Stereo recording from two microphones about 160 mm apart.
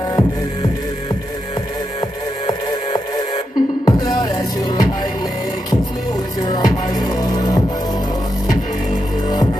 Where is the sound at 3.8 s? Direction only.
20° left (ahead or behind).